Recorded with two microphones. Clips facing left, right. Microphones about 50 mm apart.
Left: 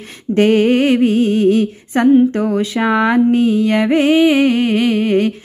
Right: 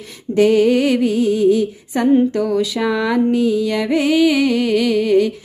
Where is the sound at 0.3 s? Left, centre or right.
Left.